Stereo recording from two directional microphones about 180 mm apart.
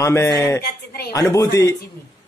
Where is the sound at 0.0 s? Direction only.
15° left (ahead or behind).